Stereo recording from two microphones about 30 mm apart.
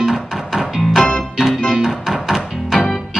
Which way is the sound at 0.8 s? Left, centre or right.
Centre.